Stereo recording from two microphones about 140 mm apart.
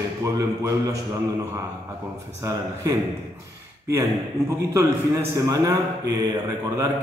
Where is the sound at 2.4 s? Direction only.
25° right (ahead or behind).